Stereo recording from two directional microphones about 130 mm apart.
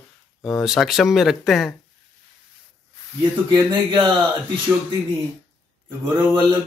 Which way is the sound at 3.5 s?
40° right (ahead or behind).